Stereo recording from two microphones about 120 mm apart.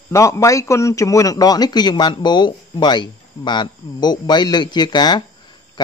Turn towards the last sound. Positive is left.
turn(degrees=35)  # may be behind; listen again after turning